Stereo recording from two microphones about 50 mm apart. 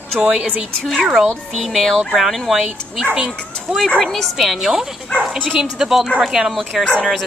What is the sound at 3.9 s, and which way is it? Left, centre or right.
Speech, centre.